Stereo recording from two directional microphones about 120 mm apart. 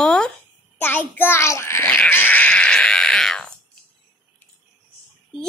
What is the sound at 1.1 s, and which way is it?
Speech, 20° left (ahead or behind).